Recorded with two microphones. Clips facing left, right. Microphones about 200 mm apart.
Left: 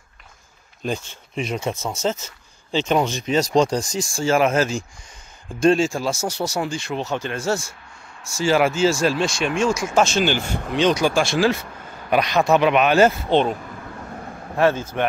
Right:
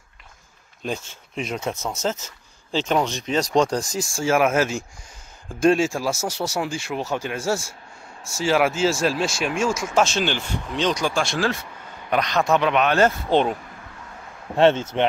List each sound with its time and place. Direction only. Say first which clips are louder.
0.8 s speech: left 2 dB; centre (ahead or behind)
13.3 s speech: left 1 dB; 10° right (ahead or behind)
14.0 s vehicle: left 7 dB; 50° left (ahead or behind)
14.6 s speech: right 2 dB; 25° right (ahead or behind)